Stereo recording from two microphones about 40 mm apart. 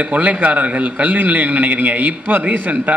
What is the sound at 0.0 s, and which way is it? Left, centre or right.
A man's voice, right.